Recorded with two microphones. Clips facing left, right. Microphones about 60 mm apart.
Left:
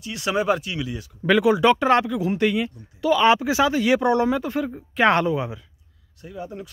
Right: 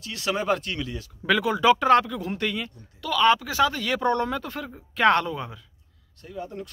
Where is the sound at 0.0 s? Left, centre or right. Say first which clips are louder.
Left 4 dB; centre.